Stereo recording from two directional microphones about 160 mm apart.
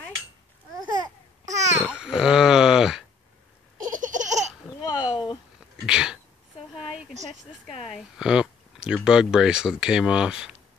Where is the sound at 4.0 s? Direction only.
50° right (ahead or behind).